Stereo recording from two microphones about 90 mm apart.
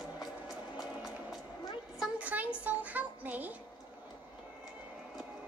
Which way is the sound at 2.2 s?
15° right (ahead or behind).